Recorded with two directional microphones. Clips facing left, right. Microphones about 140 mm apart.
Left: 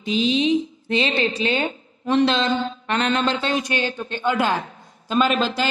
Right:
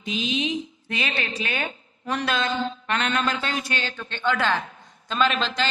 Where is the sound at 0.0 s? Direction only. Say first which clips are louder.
Left 7 dB; 30° left (ahead or behind); by 5.3 s 10° left (ahead or behind).